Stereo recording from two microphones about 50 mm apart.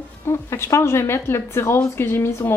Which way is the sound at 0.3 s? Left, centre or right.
Left.